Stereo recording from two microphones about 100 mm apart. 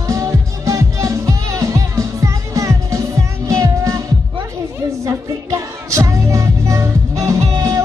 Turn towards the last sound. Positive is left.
turn(degrees=-35)  # may be behind; listen again after turning